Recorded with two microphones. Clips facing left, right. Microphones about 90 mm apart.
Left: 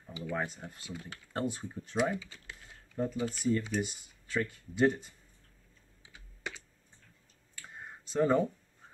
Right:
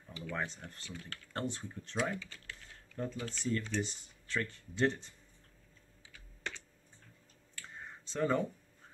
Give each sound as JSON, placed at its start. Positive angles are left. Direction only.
{"t": 0.0, "sound": "speech", "side_deg": 15}
{"t": 6.4, "sound": "computer keyboard", "side_deg": 5}
{"t": 7.5, "sound": "a sound", "side_deg": 10}